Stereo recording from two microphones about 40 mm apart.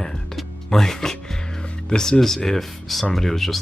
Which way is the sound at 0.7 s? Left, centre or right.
Centre.